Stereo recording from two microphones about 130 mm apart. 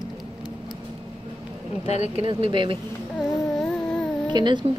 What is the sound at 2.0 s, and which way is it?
Speech, 45° right (ahead or behind).